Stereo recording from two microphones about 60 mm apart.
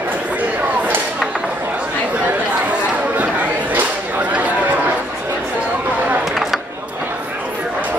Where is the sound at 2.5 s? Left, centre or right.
Right.